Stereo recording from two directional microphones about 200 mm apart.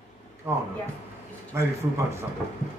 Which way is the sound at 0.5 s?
10° right (ahead or behind).